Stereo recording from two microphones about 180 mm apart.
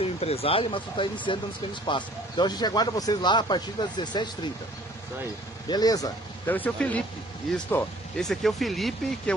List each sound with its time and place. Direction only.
0.0 s speech: 35° left (ahead or behind)
5.7 s speech: 20° left (ahead or behind)
6.5 s speech: 10° left (ahead or behind)